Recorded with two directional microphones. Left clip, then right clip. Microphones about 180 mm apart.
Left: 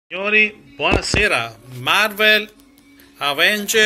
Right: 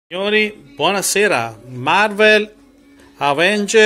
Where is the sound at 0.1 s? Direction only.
35° right (ahead or behind).